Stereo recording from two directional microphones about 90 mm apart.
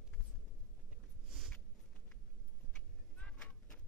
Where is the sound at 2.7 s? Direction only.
10° left (ahead or behind).